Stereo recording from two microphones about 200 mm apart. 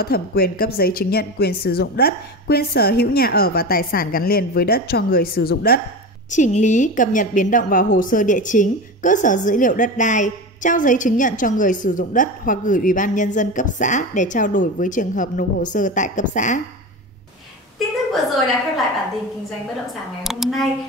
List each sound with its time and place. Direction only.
0.0 s a woman's voice: 50° left (ahead or behind)
6.3 s a woman's voice: 40° left (ahead or behind)
17.7 s a sound: centre (ahead or behind)
20.2 s speech: centre (ahead or behind)